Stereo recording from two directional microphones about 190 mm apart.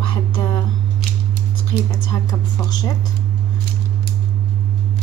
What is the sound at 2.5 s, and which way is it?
Speech, 20° left (ahead or behind).